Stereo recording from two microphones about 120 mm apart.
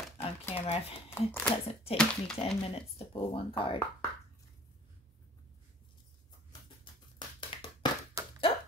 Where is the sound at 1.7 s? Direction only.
55° left (ahead or behind).